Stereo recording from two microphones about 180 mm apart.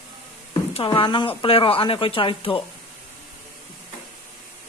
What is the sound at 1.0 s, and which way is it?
Speech, 25° left (ahead or behind).